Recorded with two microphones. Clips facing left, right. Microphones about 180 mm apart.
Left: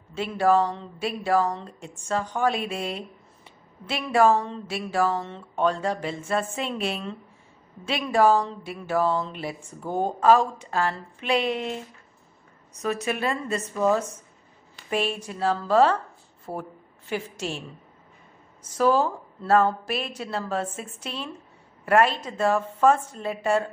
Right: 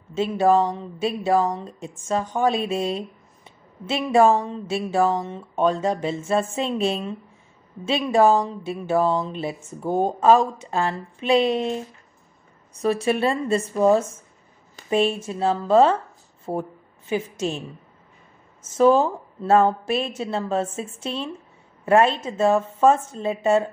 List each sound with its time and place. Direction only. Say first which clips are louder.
0.1 s a woman's voice: right 3 dB; 20° right (ahead or behind)
12.8 s speech: right 6 dB; 30° right (ahead or behind)
18.8 s speech: right 5 dB; 25° right (ahead or behind)